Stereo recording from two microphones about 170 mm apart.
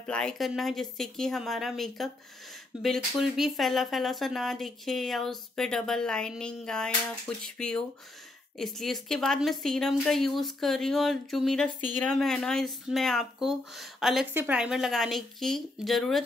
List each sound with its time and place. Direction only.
0.0 s speech: 5° left (ahead or behind)